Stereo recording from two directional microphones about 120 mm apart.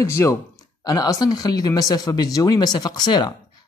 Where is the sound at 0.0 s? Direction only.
25° left (ahead or behind).